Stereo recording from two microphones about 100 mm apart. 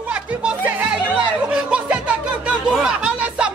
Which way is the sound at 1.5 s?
10° right (ahead or behind).